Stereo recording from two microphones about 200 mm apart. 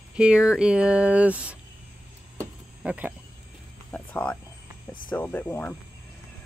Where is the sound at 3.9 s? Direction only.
5° left (ahead or behind).